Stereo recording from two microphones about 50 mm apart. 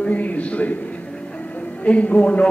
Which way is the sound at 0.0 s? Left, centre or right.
Left.